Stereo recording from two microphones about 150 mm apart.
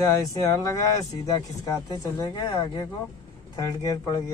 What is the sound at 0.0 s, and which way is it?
Speech, 20° left (ahead or behind).